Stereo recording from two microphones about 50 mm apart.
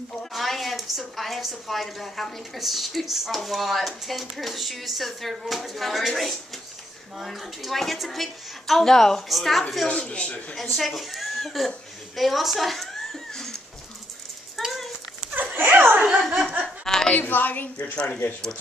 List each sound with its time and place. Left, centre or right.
0.3 s speech: centre
10.0 s a man's voice: left
10.5 s speech: centre
12.2 s a sound: centre
14.6 s a sound: centre
15.4 s dog: right
15.7 s laughter: right
16.6 s chuckle: centre
17.2 s a woman's voice: left
17.9 s a man's voice: centre